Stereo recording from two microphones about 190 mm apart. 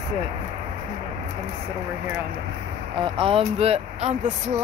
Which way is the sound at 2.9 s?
25° right (ahead or behind).